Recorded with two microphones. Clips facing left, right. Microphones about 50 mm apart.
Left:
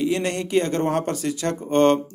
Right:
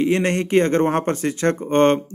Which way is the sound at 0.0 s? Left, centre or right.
Right.